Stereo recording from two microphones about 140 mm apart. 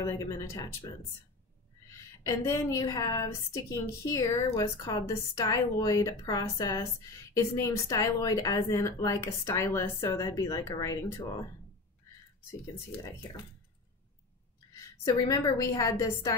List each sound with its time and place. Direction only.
0.0 s a woman's voice: 20° left (ahead or behind)
2.2 s a woman's voice: 20° left (ahead or behind)
15.1 s a woman's voice: 25° left (ahead or behind)